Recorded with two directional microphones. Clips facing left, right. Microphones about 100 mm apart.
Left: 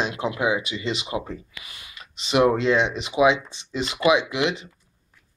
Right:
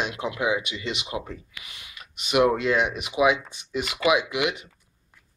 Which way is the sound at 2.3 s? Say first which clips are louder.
Left 2 dB; 30° left (ahead or behind).